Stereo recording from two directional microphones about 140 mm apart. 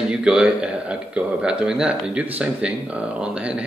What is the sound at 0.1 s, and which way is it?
Speech, 5° right (ahead or behind).